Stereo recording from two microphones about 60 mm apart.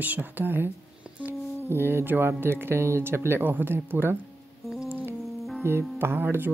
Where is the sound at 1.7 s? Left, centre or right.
Right.